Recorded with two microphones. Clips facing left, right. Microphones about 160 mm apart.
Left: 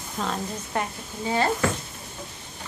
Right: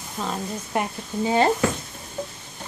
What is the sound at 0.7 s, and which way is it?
Speech, 15° right (ahead or behind).